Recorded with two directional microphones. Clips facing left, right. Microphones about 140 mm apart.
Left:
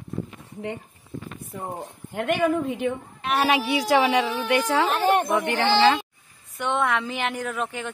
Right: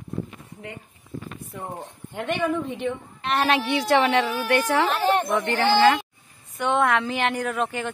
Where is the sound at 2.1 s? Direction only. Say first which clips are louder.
Left 3 dB; 5° left (ahead or behind).